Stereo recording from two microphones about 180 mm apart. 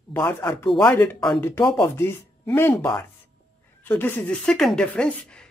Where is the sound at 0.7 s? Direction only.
5° left (ahead or behind).